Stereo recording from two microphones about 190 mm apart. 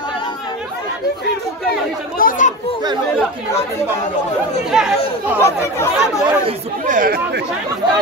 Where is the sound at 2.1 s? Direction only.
45° left (ahead or behind).